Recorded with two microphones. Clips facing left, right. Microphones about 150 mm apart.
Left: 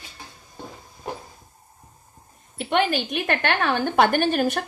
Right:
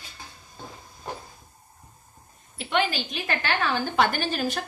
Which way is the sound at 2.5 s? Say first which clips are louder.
Left 4 dB; 50° left (ahead or behind).